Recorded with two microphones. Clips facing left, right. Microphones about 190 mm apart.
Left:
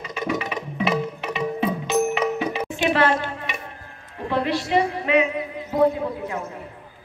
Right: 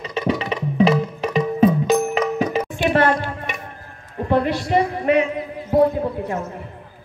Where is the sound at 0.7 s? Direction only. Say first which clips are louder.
Right 7 dB; 35° right (ahead or behind).